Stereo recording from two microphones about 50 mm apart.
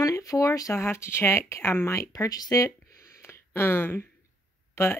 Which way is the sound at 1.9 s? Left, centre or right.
Left.